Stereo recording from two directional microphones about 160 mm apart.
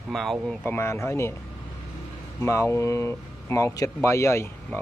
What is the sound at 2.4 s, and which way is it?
Speech, 15° left (ahead or behind).